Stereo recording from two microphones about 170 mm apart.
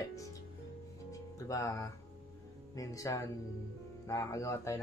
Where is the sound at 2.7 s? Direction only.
20° left (ahead or behind).